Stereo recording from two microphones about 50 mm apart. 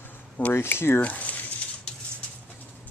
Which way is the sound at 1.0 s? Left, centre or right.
Left.